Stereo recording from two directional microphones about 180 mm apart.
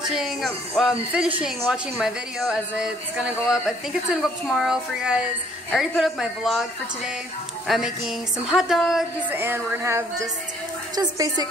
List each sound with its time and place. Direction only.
0.1 s speech: centre (ahead or behind)
7.6 s speech: centre (ahead or behind)
9.4 s music: 10° right (ahead or behind)
11.0 s a woman's voice: 20° right (ahead or behind)